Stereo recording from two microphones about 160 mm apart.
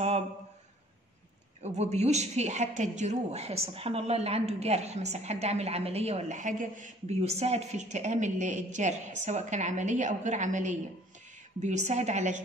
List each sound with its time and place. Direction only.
1.6 s a woman's voice: 45° right (ahead or behind)